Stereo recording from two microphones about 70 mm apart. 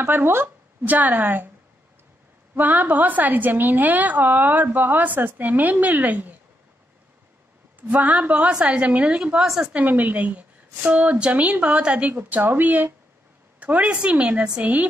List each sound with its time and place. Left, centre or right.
0.0 s speech: right
2.5 s a woman's voice: right
7.9 s a woman's voice: right
9.8 s a woman's voice: right